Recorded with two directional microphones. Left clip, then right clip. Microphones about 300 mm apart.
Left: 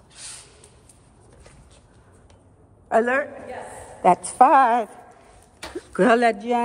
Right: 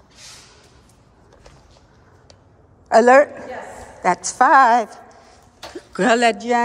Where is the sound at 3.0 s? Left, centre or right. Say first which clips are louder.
Right 12 dB; centre.